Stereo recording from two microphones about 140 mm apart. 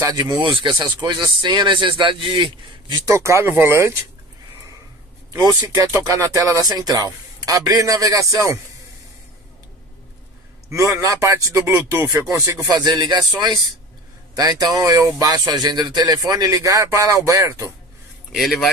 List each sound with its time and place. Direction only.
0.0 s speech: 30° right (ahead or behind)
3.1 s speech: 20° right (ahead or behind)
5.3 s speech: 25° right (ahead or behind)
10.7 s speech: 20° right (ahead or behind)
14.3 s speech: 25° right (ahead or behind)
18.3 s speech: centre (ahead or behind)